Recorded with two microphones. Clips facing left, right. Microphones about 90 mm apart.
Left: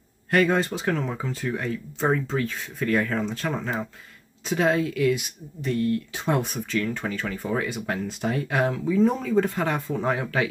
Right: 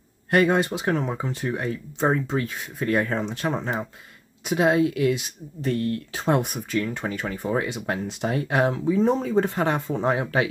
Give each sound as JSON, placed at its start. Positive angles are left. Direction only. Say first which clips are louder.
{"t": 0.3, "sound": "speech", "louder": "right 1 dB", "side_deg": -20}
{"t": 5.7, "sound": "speech", "louder": "left 1 dB", "side_deg": -40}
{"t": 6.8, "sound": "speech", "louder": "right 1 dB", "side_deg": -20}